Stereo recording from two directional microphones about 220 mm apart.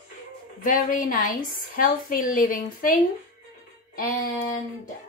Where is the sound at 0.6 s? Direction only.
35° left (ahead or behind).